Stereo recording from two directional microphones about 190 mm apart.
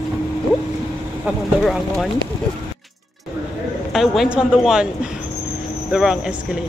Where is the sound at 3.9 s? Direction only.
Centre (ahead or behind).